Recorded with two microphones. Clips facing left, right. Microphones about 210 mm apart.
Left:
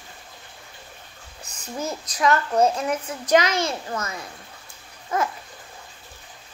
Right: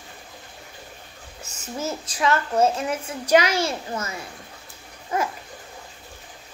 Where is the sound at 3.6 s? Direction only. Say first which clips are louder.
Even; 30° right (ahead or behind).